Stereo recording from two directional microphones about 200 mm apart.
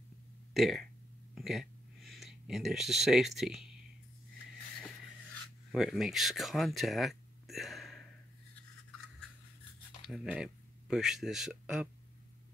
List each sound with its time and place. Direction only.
0.6 s speech: centre (ahead or behind)
1.3 s a sound: centre (ahead or behind)
5.7 s speech: centre (ahead or behind)
10.0 s speech: centre (ahead or behind)